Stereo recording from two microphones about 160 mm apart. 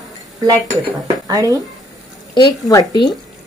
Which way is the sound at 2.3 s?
25° left (ahead or behind).